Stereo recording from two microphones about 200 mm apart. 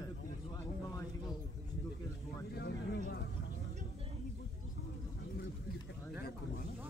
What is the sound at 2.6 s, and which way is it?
Speech, 55° left (ahead or behind).